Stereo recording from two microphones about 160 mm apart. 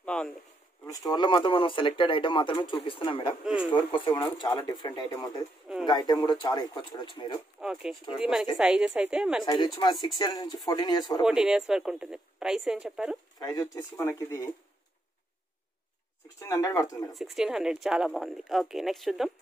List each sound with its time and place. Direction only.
0.0 s a sound: 5° left (ahead or behind)
0.8 s speech: 20° left (ahead or behind)
7.6 s speech: centre (ahead or behind)
9.5 s speech: 25° left (ahead or behind)
11.2 s speech: 5° right (ahead or behind)
13.4 s speech: 25° left (ahead or behind)
16.3 s speech: 20° left (ahead or behind)
17.1 s speech: centre (ahead or behind)